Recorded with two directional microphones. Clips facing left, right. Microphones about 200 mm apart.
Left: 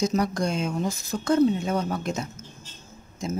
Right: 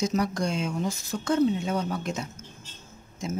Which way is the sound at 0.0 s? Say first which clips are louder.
Left 2 dB; 40° left (ahead or behind).